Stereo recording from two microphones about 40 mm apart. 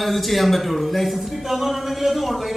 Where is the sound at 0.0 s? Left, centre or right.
Centre.